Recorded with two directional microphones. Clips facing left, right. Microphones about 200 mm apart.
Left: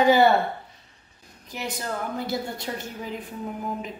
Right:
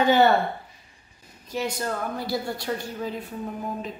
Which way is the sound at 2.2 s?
20° left (ahead or behind).